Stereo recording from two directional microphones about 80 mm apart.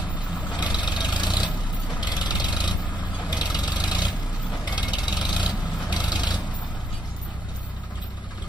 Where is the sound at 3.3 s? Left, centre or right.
Left.